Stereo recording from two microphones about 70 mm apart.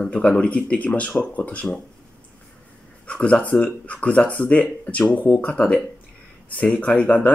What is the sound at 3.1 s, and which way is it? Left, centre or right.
Speech, centre.